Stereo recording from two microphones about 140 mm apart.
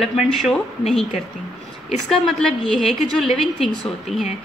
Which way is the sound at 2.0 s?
Centre (ahead or behind).